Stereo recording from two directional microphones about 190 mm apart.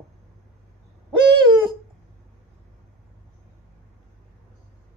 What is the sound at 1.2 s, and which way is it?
Owl, 25° right (ahead or behind).